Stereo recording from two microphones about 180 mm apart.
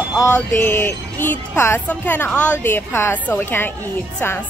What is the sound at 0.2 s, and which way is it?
A woman's voice, 15° left (ahead or behind).